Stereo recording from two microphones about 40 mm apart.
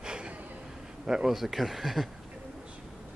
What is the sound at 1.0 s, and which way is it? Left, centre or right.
Speech, centre.